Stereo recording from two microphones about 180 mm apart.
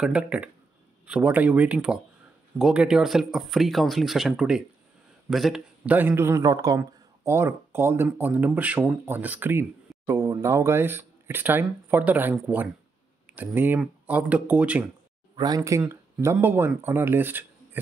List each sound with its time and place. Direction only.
0.0 s a man's voice: 5° right (ahead or behind)
15.3 s a man's voice: 20° right (ahead or behind)